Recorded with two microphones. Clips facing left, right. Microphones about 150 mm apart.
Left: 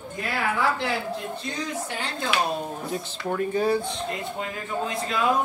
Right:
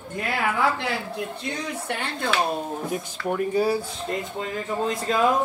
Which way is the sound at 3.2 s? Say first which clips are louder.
Right 1 dB; 10° right (ahead or behind).